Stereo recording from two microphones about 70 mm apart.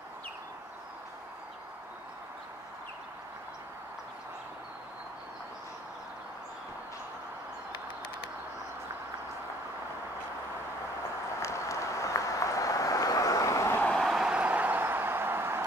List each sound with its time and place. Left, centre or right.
11.4 s a sound: left
13.8 s vehicle: centre
14.1 s vehicle: centre; by 15.6 s right